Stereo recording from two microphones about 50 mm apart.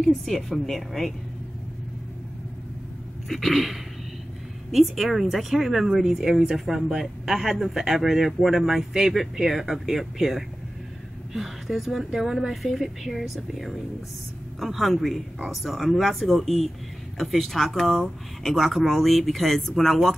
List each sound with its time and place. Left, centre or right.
0.0 s speech: centre
3.3 s speech: centre